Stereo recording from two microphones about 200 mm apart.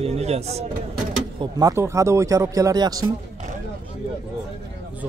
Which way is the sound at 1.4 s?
20° right (ahead or behind).